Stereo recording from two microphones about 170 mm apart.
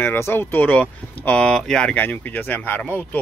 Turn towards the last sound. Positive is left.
turn(degrees=10)  # may be behind; listen again after turning